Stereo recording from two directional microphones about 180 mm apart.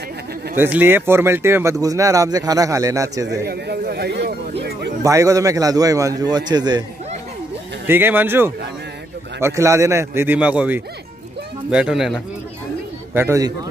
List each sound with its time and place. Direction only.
0.6 s speech: 10° right (ahead or behind)
3.4 s speech: 60° right (ahead or behind)
5.0 s a man's voice: 15° right (ahead or behind)
7.8 s speech: 10° right (ahead or behind)
13.1 s speech: 15° right (ahead or behind)